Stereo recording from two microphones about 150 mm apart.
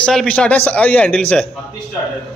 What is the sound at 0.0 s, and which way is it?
A man's voice, 5° left (ahead or behind).